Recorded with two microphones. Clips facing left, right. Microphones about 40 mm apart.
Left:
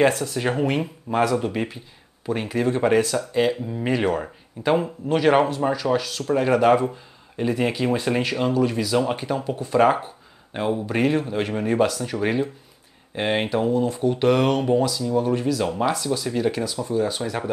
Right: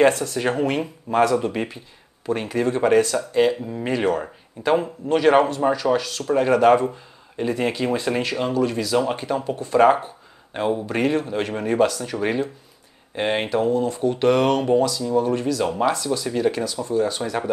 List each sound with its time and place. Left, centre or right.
0.0 s speech: centre